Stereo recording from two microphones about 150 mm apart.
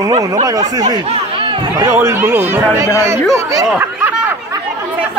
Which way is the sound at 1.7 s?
20° right (ahead or behind).